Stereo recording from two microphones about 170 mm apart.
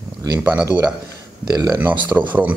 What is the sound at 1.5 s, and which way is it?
Speech, 20° right (ahead or behind).